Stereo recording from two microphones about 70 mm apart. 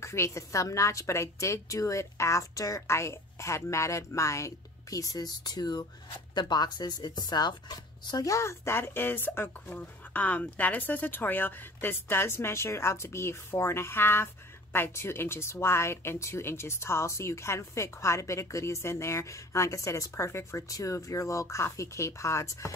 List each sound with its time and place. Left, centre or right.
0.0 s a woman's voice: left
8.3 s speech: left